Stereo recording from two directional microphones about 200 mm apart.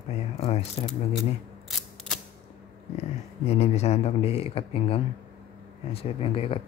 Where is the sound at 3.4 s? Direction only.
35° left (ahead or behind).